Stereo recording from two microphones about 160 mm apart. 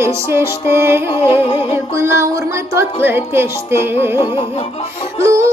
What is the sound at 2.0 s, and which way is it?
Music, 15° right (ahead or behind).